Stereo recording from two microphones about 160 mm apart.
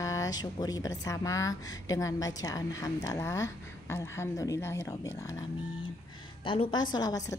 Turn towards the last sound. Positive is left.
turn(degrees=25)  # may be behind; listen again after turning